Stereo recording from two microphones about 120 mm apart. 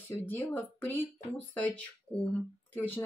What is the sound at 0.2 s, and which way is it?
Speech, 15° left (ahead or behind).